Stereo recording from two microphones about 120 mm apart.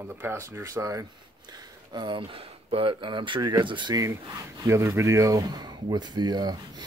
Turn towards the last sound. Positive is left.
turn(degrees=-35)  # may be behind; listen again after turning